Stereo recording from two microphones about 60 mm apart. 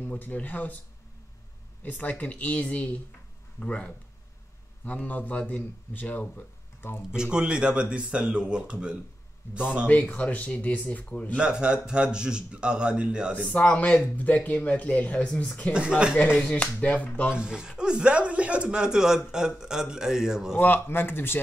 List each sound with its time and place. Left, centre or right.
0.0 s speech: left
1.8 s speech: left
7.1 s speech: centre
9.8 s speech: left
11.3 s speech: centre
13.5 s speech: left
15.7 s speech: centre
16.3 s speech: centre
17.3 s speech: centre
20.5 s speech: left